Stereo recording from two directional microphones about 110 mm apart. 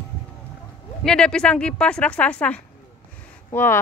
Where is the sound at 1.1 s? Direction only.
5° left (ahead or behind).